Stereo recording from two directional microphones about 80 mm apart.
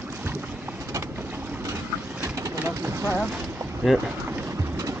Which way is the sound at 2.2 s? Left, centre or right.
Right.